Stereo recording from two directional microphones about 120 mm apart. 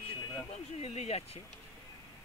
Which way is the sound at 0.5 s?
60° left (ahead or behind).